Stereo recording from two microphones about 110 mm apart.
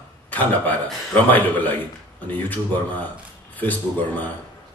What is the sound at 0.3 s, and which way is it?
A man's voice, 15° left (ahead or behind).